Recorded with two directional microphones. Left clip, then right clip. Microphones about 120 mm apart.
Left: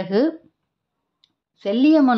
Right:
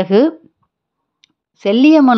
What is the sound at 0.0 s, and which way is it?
Speech, 45° right (ahead or behind).